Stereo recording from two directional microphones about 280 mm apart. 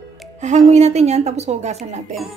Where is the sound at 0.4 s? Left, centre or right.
Right.